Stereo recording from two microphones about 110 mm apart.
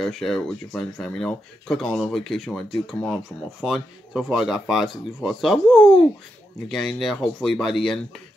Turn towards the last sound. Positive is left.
turn(degrees=0)  # may be behind; listen again after turning